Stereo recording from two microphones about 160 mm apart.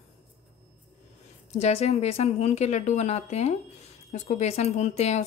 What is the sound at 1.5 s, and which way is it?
Speech, 40° left (ahead or behind).